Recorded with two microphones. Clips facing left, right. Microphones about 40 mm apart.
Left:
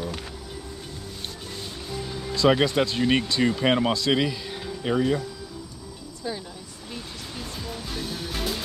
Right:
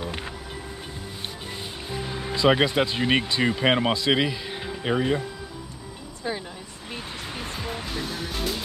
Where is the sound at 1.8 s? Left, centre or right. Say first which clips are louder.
Right 2 dB; right.